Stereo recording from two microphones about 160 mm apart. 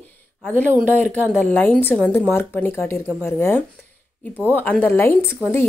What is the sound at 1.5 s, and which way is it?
Speech, 10° left (ahead or behind).